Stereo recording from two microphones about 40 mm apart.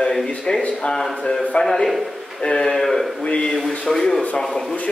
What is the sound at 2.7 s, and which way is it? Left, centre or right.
Speech, centre.